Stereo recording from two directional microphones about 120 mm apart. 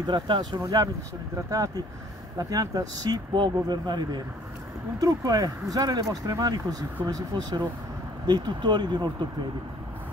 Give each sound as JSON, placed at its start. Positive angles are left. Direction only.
{"t": 0.0, "sound": "speech", "side_deg": -40}
{"t": 0.6, "sound": "speech", "side_deg": -30}
{"t": 2.3, "sound": "speech", "side_deg": -30}